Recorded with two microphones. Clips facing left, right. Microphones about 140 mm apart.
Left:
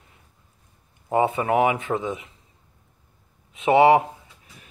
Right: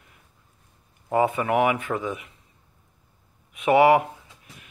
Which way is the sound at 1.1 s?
25° left (ahead or behind).